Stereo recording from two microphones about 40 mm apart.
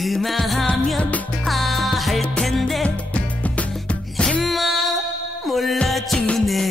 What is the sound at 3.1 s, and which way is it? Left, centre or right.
Music, left.